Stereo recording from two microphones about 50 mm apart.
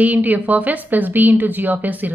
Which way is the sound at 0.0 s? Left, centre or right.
Right.